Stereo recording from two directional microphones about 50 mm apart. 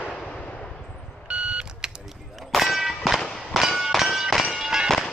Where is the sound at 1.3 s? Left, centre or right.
Centre.